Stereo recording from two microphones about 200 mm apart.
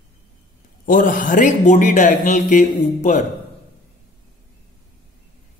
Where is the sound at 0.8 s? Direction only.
45° left (ahead or behind).